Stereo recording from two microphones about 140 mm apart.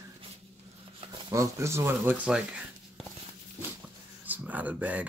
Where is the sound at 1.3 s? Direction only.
20° right (ahead or behind).